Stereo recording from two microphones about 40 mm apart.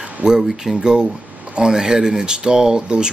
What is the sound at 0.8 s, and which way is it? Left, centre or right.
Speech, centre.